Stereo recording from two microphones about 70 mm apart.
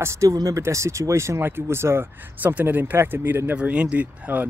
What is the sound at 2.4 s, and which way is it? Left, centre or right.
Speech, right.